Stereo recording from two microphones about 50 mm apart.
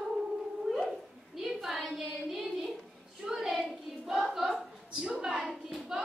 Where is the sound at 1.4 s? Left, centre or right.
Centre.